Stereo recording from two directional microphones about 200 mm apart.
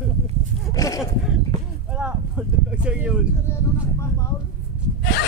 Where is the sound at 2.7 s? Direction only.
5° right (ahead or behind).